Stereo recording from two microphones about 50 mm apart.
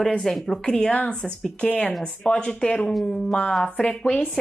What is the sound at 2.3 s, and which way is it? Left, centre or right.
Speech, centre.